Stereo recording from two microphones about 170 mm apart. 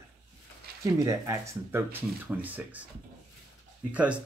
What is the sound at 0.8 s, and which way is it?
Speech, 20° right (ahead or behind).